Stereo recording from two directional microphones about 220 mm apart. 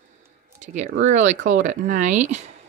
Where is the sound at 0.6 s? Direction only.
35° right (ahead or behind).